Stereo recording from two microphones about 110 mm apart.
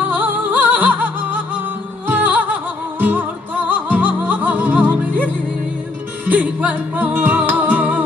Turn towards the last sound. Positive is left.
turn(degrees=-15)  # may be behind; listen again after turning